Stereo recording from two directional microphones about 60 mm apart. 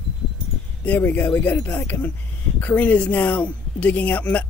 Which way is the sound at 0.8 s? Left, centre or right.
Left.